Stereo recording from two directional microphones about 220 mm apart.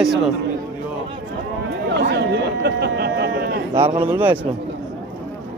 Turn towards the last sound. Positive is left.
turn(degrees=-10)  # may be behind; listen again after turning